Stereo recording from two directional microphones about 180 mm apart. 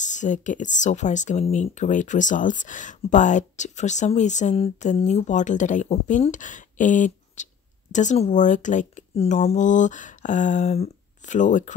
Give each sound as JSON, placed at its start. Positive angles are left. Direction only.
{"t": 0.0, "sound": "speech", "side_deg": 40}